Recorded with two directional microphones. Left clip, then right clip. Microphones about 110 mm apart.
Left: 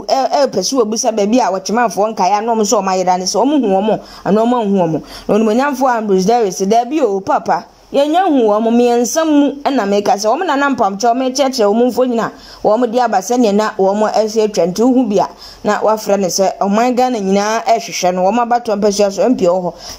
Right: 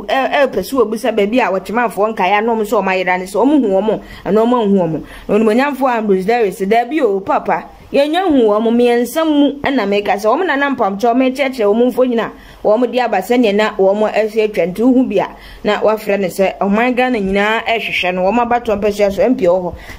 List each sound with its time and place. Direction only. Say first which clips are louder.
0.1 s speech: left 1 dB; 35° left (ahead or behind)
3.3 s speech: even; 10° left (ahead or behind)
9.2 s speech: even; 10° left (ahead or behind)
9.7 s speech: left 1 dB; 25° left (ahead or behind)
16.8 s speech: left 1 dB; 40° left (ahead or behind); by 19.7 s 20° left (ahead or behind)